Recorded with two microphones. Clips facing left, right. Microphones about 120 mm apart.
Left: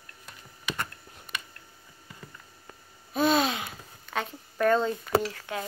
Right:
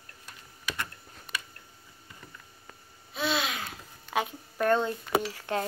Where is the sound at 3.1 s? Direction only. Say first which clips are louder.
Left 7 dB; 45° left (ahead or behind).